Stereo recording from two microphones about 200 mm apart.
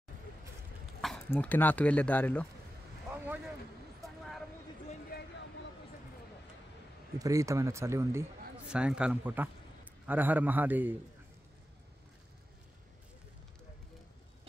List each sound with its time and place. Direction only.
1.0 s speech: 5° left (ahead or behind)
5.1 s a sound: 50° left (ahead or behind)
7.2 s a man's voice: 15° right (ahead or behind)